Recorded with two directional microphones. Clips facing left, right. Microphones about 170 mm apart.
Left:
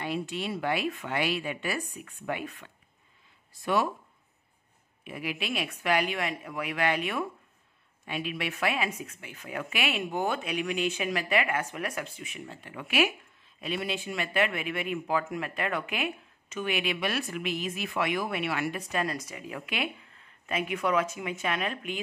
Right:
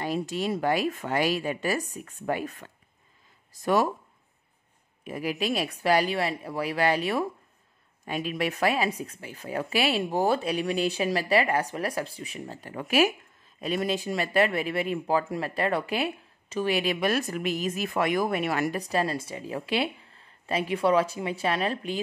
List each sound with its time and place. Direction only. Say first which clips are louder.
0.0 s speech: right 4 dB; 40° right (ahead or behind)
5.0 s speech: right 6 dB; 40° right (ahead or behind)